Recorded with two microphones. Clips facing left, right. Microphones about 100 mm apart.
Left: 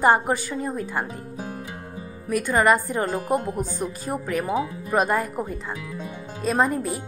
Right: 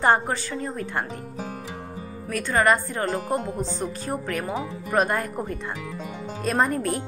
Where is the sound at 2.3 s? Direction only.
10° left (ahead or behind).